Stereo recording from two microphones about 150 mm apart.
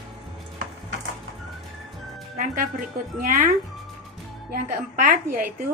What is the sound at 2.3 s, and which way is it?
Music, 65° right (ahead or behind).